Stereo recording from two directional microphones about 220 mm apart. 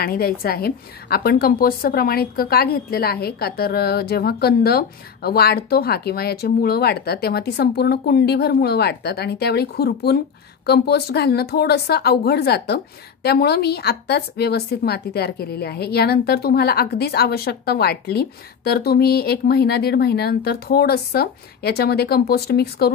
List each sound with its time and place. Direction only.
0.0 s speech: 45° left (ahead or behind)